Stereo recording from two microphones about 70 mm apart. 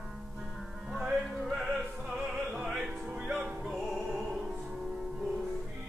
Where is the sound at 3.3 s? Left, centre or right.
Centre.